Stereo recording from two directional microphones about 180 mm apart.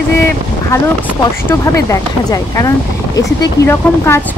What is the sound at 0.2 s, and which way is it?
A woman's voice, 15° left (ahead or behind).